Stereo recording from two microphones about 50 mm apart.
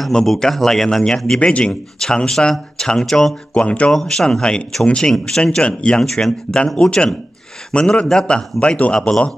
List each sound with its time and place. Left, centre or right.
0.1 s a man's voice: centre
3.5 s a man's voice: left
3.9 s a man's voice: centre; by 9.1 s left